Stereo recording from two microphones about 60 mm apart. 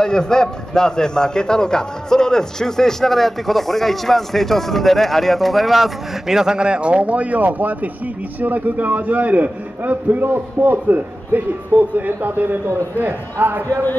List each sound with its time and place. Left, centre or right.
0.0 s a man's voice: centre; by 13.7 s right